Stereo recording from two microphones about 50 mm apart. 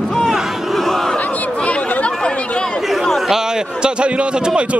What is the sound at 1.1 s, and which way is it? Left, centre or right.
Chatter, left.